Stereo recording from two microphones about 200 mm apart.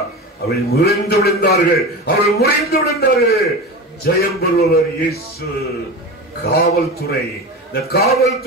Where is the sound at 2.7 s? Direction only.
50° left (ahead or behind).